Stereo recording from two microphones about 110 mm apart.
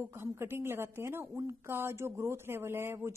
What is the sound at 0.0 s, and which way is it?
A woman's voice, 25° right (ahead or behind).